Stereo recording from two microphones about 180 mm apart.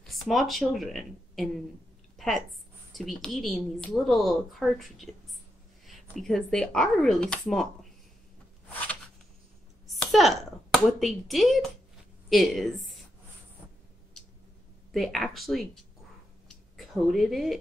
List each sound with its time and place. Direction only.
0.0 s speech: centre (ahead or behind)
2.1 s a sound: centre (ahead or behind)
2.9 s a woman's voice: centre (ahead or behind)
9.8 s a woman's voice: centre (ahead or behind)
14.9 s a woman's voice: centre (ahead or behind)
16.4 s a sound: centre (ahead or behind)